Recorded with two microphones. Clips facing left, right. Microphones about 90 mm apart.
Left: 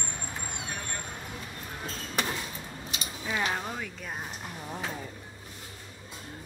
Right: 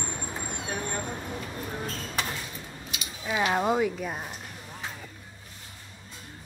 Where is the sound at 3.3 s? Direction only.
20° right (ahead or behind).